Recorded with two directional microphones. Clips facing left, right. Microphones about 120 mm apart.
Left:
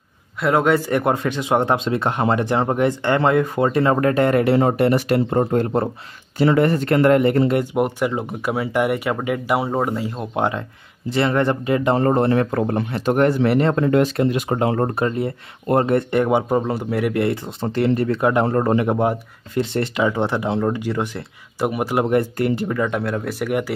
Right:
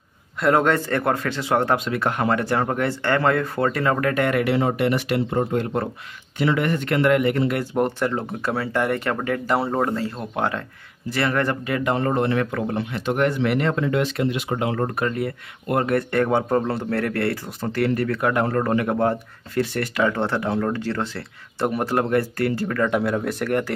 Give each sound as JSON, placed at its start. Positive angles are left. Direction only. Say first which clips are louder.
{"t": 0.4, "sound": "speech", "louder": "left 1 dB", "side_deg": 0}
{"t": 7.7, "sound": "speech", "louder": "left 2 dB", "side_deg": 10}
{"t": 15.0, "sound": "speech", "louder": "left 2 dB", "side_deg": 25}
{"t": 22.8, "sound": "speech", "louder": "right 1 dB", "side_deg": 0}